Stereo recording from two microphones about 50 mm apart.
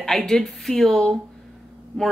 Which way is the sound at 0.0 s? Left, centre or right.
Centre.